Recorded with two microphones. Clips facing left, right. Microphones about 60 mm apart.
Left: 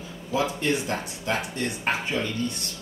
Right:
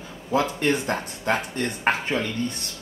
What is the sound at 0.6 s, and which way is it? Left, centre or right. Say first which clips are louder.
Speech: right 3 dB; right.